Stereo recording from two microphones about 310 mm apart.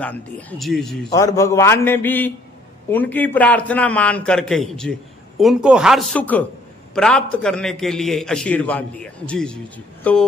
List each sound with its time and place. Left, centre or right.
0.0 s a man's voice: centre